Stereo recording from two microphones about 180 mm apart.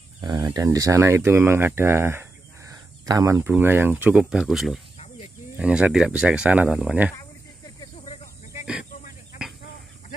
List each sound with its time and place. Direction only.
0.2 s speech: 25° right (ahead or behind); by 4.7 s centre (ahead or behind)
4.9 s snake: 35° left (ahead or behind)
5.6 s speech: 5° right (ahead or behind)
8.0 s snake: 40° left (ahead or behind)